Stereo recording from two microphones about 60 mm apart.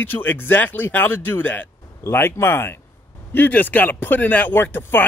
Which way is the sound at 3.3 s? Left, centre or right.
Left.